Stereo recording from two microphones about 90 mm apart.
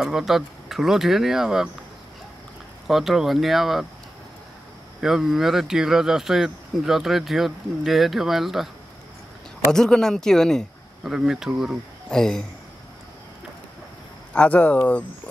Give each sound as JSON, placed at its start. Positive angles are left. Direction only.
{"t": 0.0, "sound": "speech", "side_deg": -5}
{"t": 2.9, "sound": "speech", "side_deg": -5}
{"t": 5.0, "sound": "speech", "side_deg": -5}
{"t": 9.7, "sound": "speech", "side_deg": 5}
{"t": 11.1, "sound": "speech", "side_deg": -5}
{"t": 12.1, "sound": "speech", "side_deg": 5}
{"t": 14.3, "sound": "speech", "side_deg": 15}